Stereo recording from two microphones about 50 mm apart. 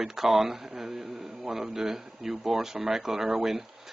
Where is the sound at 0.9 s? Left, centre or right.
Right.